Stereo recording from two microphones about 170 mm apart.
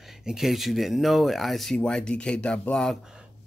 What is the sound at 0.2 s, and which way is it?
Speech, 5° right (ahead or behind).